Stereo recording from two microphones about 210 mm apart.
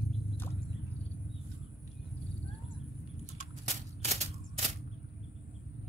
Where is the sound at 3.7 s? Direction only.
30° right (ahead or behind).